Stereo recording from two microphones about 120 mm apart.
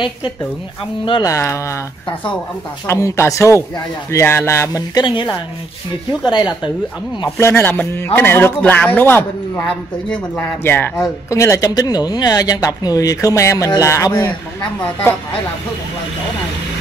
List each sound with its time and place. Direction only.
1.2 s speech: 25° left (ahead or behind)
2.9 s speech: 25° left (ahead or behind)
5.0 s speech: 45° left (ahead or behind)
7.2 s a man's voice: 20° left (ahead or behind)
9.7 s a man's voice: 5° left (ahead or behind)
10.3 s a man's voice: 20° left (ahead or behind)